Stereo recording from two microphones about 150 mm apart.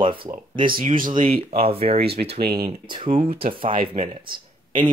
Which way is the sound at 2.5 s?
30° right (ahead or behind).